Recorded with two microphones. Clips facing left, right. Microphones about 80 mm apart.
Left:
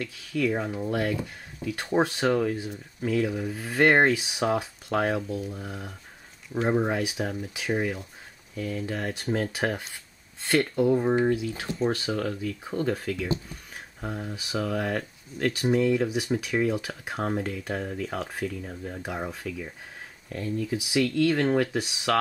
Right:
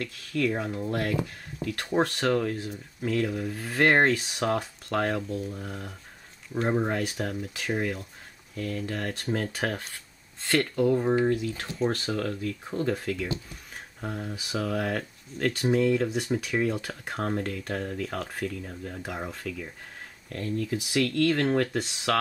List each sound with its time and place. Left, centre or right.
0.0 s speech: centre